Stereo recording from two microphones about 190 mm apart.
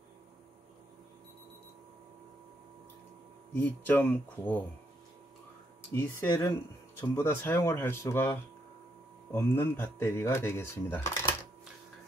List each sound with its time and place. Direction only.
3.5 s speech: 10° left (ahead or behind)
5.9 s speech: 15° left (ahead or behind)